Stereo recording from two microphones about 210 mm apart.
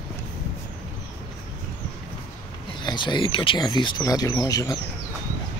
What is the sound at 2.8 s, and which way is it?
Speech, 20° left (ahead or behind).